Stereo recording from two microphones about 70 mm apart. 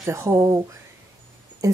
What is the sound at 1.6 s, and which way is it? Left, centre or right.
Speech, right.